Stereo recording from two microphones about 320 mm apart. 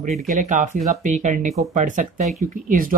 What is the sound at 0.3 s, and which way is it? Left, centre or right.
Speech, right.